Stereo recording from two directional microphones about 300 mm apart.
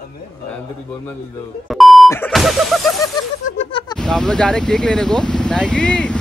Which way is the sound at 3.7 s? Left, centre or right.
Centre.